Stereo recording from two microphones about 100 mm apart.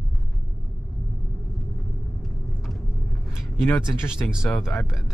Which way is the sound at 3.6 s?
25° left (ahead or behind).